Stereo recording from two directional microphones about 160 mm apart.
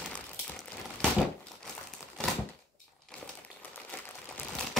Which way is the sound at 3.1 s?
5° left (ahead or behind).